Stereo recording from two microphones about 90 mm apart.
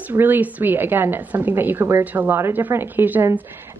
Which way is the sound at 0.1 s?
20° right (ahead or behind).